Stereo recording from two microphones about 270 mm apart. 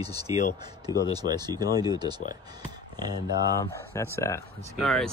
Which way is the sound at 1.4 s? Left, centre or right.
Centre.